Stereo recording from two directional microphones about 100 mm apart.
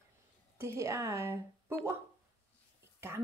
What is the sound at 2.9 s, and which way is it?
Speech, 25° right (ahead or behind).